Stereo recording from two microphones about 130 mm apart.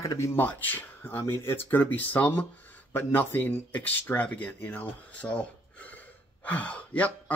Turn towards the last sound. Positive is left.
turn(degrees=10)  # may be behind; listen again after turning